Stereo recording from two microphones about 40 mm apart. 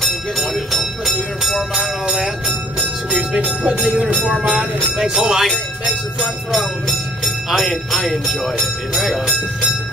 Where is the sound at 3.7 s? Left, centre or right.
Centre.